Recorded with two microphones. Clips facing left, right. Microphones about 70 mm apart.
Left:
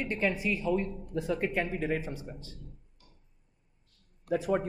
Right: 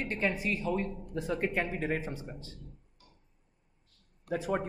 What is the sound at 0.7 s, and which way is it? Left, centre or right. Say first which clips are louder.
A man's voice: left 2 dB; centre.